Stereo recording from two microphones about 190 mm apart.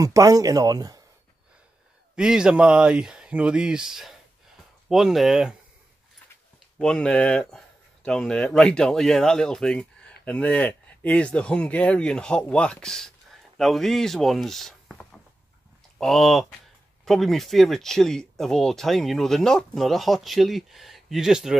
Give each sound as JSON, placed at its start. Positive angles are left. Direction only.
{"t": 0.0, "sound": "speech", "side_deg": -15}
{"t": 2.1, "sound": "speech", "side_deg": -5}
{"t": 6.8, "sound": "speech", "side_deg": 5}